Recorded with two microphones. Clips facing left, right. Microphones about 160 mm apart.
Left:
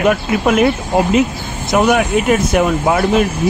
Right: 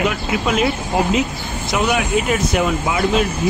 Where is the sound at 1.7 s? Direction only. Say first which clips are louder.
Left 6 dB; 55° left (ahead or behind).